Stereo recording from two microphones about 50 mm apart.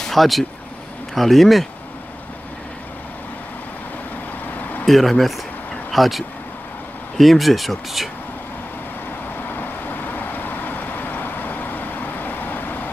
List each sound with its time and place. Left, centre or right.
0.0 s speech: centre
4.6 s a sound: left
4.8 s speech: centre
9.6 s vehicle: left